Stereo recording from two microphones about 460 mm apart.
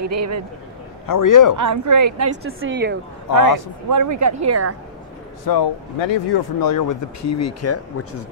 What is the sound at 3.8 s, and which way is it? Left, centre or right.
Speech, right.